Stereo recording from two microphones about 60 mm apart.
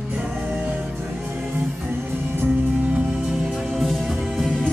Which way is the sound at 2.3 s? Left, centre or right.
Right.